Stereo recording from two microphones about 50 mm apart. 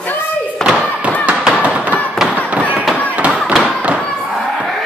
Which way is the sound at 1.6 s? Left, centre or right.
Right.